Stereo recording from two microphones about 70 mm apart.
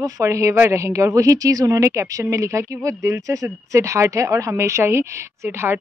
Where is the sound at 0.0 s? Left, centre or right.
Right.